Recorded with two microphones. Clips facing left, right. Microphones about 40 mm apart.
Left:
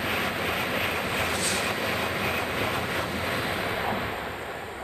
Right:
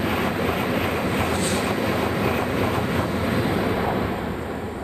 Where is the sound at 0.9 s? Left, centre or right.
Right.